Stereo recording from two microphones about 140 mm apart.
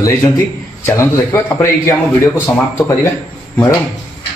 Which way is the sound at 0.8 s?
20° left (ahead or behind).